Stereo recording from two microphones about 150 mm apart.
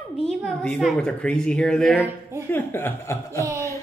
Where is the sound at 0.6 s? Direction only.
Centre (ahead or behind).